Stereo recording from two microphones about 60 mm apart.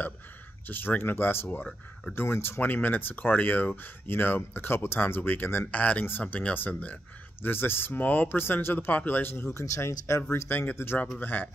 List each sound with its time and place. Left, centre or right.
0.7 s speech: left
2.6 s speech: left
5.7 s speech: left
6.2 s speech: centre
7.4 s speech: left
10.3 s speech: left